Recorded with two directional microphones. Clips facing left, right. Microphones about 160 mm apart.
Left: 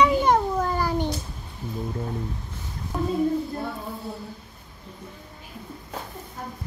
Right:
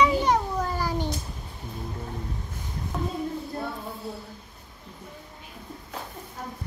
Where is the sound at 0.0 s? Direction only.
55° left (ahead or behind).